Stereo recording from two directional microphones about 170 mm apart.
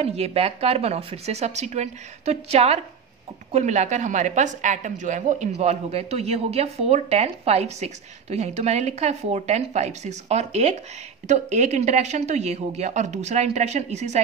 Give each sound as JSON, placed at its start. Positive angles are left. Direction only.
{"t": 0.0, "sound": "a woman's voice", "side_deg": -35}